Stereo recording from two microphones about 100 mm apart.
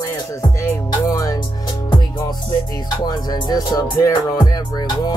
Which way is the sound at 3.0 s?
40° left (ahead or behind).